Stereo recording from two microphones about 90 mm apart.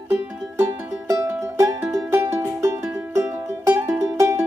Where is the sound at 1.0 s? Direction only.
40° right (ahead or behind).